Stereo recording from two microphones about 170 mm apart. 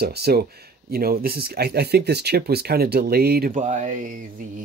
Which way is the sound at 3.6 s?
45° right (ahead or behind).